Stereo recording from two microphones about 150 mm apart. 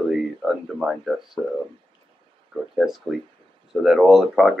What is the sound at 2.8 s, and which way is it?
Speech, centre (ahead or behind).